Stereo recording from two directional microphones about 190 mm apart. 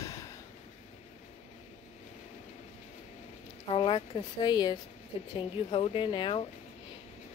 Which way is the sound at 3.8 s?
25° left (ahead or behind).